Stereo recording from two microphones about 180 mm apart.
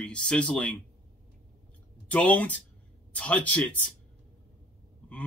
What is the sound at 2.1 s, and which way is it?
Speech, 10° left (ahead or behind).